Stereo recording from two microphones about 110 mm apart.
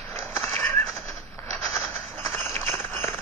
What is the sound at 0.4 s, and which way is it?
Horse, 25° left (ahead or behind).